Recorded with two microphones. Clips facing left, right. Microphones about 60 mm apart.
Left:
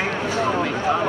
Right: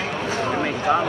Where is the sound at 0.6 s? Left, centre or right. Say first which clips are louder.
Right 1 dB; centre.